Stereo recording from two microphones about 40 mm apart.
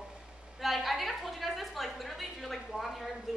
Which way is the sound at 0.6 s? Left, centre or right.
Centre.